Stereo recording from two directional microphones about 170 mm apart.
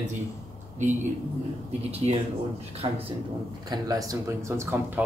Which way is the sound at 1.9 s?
35° right (ahead or behind).